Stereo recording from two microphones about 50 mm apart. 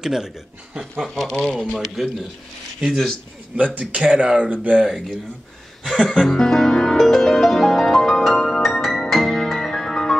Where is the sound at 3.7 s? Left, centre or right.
Right.